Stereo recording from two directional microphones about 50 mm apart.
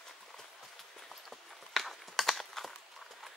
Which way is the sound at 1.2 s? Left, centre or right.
Centre.